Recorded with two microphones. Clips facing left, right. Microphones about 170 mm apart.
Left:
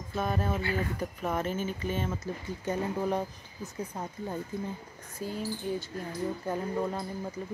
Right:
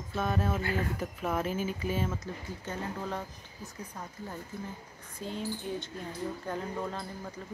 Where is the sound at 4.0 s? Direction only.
30° left (ahead or behind).